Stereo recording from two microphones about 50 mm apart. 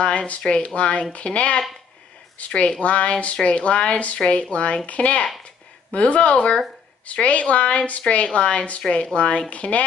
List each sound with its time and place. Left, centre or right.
0.4 s speech: centre
0.7 s a woman's voice: left